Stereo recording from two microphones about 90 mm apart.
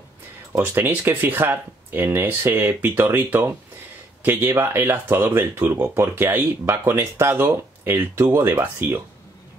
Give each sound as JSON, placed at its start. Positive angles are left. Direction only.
{"t": 0.6, "sound": "speech", "side_deg": -25}